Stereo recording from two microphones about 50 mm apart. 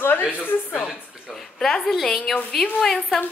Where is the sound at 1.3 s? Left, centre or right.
Centre.